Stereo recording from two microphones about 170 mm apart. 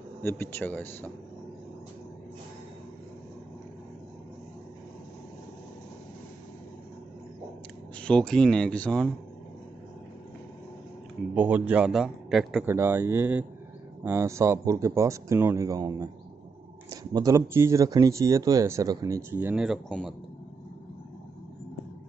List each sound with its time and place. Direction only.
0.2 s speech: 15° left (ahead or behind)
8.0 s a man's voice: 5° left (ahead or behind)
11.3 s a man's voice: 10° right (ahead or behind)
12.6 s speech: 15° right (ahead or behind)
19.3 s a man's voice: 5° right (ahead or behind)